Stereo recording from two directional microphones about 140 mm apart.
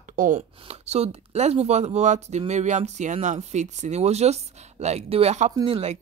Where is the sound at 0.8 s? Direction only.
50° right (ahead or behind).